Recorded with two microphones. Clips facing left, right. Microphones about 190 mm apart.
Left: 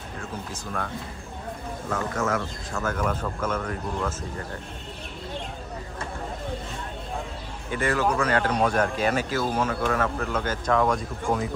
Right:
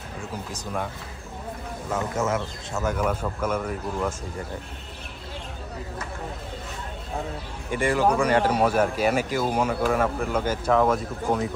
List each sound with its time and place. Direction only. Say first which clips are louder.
2.1 s speech: right 1 dB; 20° right (ahead or behind)
3.0 s speech: right 2 dB; 10° right (ahead or behind)
7.7 s speech: right 3 dB; 10° right (ahead or behind)